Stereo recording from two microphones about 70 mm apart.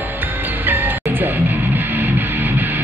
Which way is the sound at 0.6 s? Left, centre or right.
Right.